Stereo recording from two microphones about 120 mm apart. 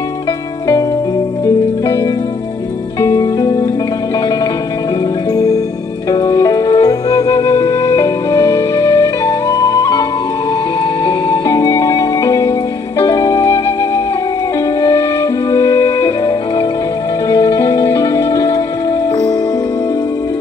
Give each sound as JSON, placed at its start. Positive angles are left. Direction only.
{"t": 3.0, "sound": "music", "side_deg": 30}
{"t": 5.3, "sound": "music", "side_deg": 30}
{"t": 11.1, "sound": "music", "side_deg": 35}